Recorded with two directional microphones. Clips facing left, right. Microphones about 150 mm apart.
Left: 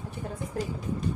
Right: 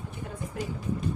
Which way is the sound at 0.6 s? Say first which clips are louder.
Left 3 dB; 35° left (ahead or behind).